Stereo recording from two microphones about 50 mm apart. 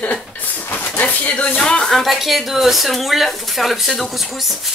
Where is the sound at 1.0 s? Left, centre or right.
Left.